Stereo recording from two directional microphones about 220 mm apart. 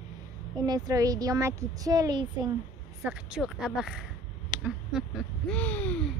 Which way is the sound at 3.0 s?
5° right (ahead or behind).